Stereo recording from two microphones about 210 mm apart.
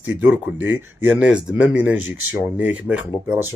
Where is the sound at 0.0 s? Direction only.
10° right (ahead or behind).